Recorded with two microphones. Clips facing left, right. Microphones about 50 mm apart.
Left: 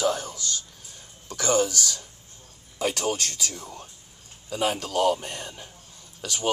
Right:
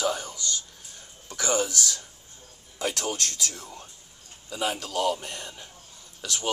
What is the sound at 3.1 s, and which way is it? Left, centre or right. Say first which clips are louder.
Speech: left 3 dB; left.